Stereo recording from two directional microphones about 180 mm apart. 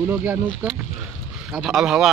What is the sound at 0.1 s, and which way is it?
Speech, 10° right (ahead or behind).